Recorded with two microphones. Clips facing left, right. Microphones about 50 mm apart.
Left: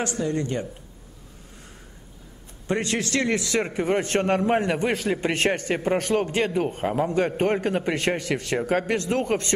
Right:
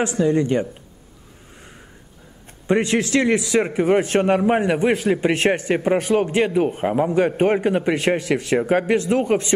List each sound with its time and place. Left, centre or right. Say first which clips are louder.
0.3 s speech: right 8 dB; right
2.6 s a man's voice: right 7 dB; right